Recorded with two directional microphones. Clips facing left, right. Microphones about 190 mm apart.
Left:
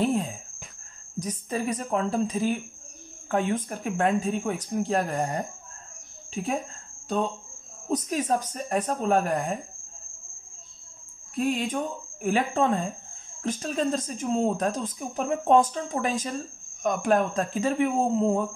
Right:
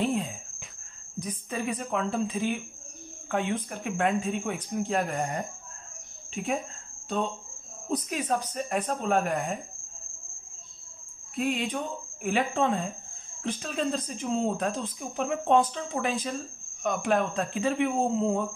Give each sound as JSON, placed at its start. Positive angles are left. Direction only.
{"t": 0.0, "sound": "cricket", "side_deg": 40}
{"t": 1.2, "sound": "speech", "side_deg": 40}
{"t": 7.9, "sound": "speech", "side_deg": 40}
{"t": 11.3, "sound": "speech", "side_deg": 40}